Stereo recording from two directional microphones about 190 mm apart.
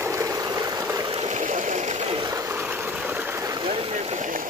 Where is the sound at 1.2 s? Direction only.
40° right (ahead or behind).